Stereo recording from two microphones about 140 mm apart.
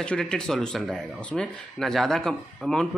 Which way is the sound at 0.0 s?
5° left (ahead or behind).